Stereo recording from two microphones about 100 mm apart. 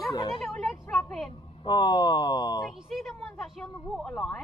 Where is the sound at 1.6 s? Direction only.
50° left (ahead or behind).